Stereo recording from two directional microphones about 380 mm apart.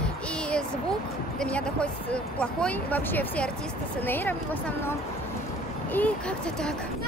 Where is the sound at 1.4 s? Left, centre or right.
Centre.